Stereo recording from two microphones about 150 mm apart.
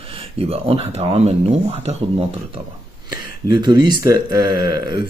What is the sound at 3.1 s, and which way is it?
Speech, 30° right (ahead or behind).